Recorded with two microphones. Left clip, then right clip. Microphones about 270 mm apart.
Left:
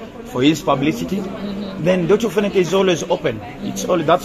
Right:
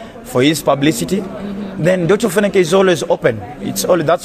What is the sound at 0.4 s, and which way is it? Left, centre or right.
A man's voice, right.